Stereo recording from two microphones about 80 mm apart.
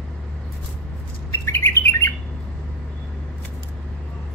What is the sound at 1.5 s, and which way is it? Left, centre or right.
Bird, left.